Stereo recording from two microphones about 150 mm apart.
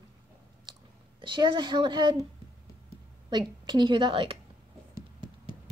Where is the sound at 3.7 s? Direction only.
30° right (ahead or behind).